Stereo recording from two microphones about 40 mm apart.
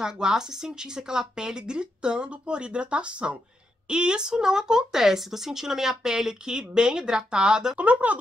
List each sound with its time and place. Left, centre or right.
0.0 s speech: centre
7.8 s speech: right